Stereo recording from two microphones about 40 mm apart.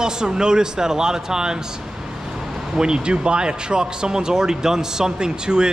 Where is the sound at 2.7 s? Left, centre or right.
Right.